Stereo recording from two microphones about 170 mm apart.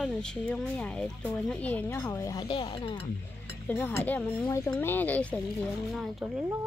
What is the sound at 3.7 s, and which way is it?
Speech, 10° left (ahead or behind).